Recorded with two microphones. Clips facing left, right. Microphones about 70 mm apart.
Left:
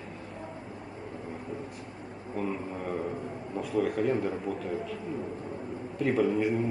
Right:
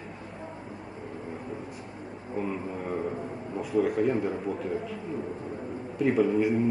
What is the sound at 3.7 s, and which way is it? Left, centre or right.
Speech, centre.